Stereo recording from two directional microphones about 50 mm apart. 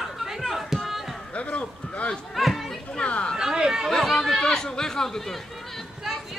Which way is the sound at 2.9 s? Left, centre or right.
Left.